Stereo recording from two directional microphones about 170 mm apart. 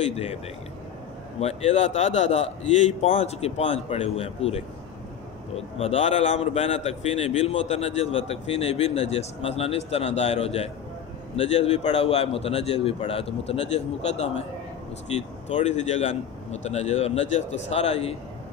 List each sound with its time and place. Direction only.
0.0 s a man's voice: 40° left (ahead or behind)
1.4 s a man's voice: 40° left (ahead or behind)